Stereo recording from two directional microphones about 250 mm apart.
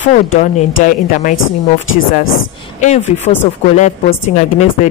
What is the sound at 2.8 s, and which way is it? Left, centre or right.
Speech, left.